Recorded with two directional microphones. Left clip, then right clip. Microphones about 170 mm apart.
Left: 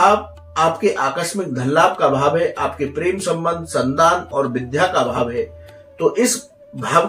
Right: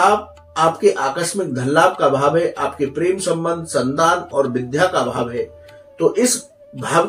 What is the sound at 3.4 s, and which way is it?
Speech, 25° right (ahead or behind).